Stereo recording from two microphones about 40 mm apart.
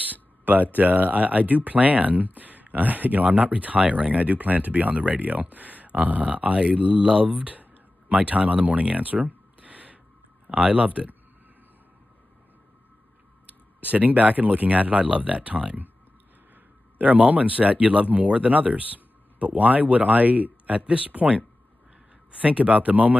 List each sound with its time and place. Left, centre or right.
0.0 s speech: right
13.5 s speech: right
17.0 s speech: right
22.4 s speech: right